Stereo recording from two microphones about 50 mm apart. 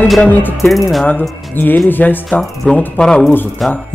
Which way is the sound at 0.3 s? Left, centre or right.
Left.